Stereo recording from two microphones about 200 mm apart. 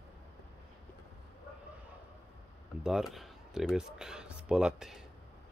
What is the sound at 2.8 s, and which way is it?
Speech, centre (ahead or behind).